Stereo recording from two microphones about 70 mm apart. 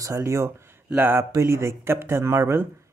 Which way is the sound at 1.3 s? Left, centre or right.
Right.